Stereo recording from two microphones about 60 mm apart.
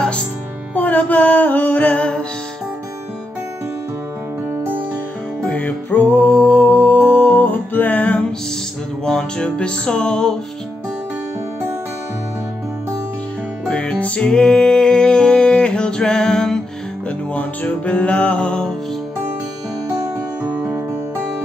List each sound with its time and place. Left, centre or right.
0.7 s music: left
5.5 s music: left
9.0 s music: centre
13.7 s music: centre
17.3 s music: left
20.4 s music: right